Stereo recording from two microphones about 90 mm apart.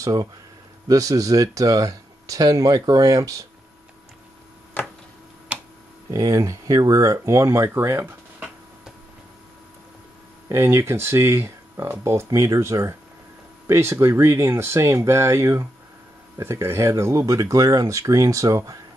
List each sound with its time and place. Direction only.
0.0 s speech: 40° right (ahead or behind)
5.5 s tick-tock: 15° right (ahead or behind)
6.0 s speech: 40° right (ahead or behind)
8.0 s tick-tock: 10° right (ahead or behind)
10.5 s speech: 30° right (ahead or behind)